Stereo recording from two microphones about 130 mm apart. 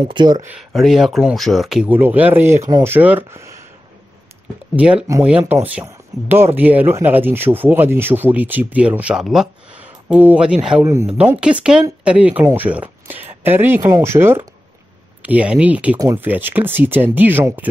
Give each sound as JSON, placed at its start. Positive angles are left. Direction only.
{"t": 0.1, "sound": "speech", "side_deg": -35}
{"t": 0.6, "sound": "speech", "side_deg": -5}
{"t": 4.7, "sound": "speech", "side_deg": -10}